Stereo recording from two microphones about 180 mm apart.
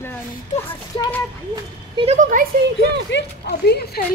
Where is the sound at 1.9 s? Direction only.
35° right (ahead or behind).